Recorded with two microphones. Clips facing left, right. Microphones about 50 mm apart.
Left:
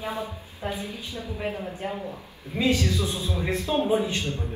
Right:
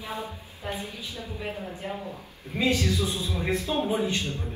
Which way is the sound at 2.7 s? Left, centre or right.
Left.